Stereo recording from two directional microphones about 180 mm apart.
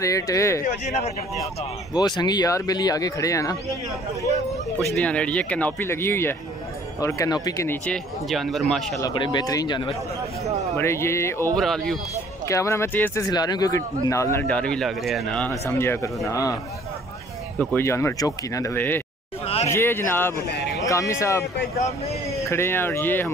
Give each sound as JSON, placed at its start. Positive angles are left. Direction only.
{"t": 0.0, "sound": "speech", "side_deg": 15}
{"t": 0.7, "sound": "speech", "side_deg": 40}
{"t": 2.0, "sound": "speech", "side_deg": 25}
{"t": 4.9, "sound": "speech", "side_deg": 5}
{"t": 9.0, "sound": "speech", "side_deg": 20}
{"t": 11.5, "sound": "speech", "side_deg": 5}
{"t": 12.4, "sound": "speech", "side_deg": 15}
{"t": 15.6, "sound": "speech", "side_deg": 15}
{"t": 17.6, "sound": "speech", "side_deg": 15}
{"t": 19.4, "sound": "a sound", "side_deg": 35}
{"t": 19.7, "sound": "speech", "side_deg": 15}
{"t": 20.4, "sound": "a sound", "side_deg": 65}
{"t": 20.8, "sound": "speech", "side_deg": 15}